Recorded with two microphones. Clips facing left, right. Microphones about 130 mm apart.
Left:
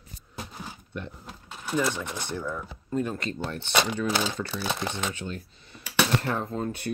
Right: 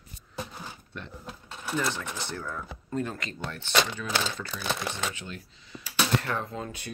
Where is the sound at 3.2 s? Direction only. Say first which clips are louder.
Left 5 dB; 30° left (ahead or behind).